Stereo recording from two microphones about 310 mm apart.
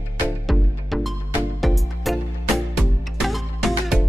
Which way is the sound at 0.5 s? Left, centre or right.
Centre.